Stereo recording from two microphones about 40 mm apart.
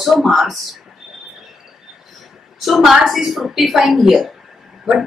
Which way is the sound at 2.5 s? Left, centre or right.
Centre.